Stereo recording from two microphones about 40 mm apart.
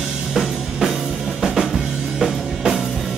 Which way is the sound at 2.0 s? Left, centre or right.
Right.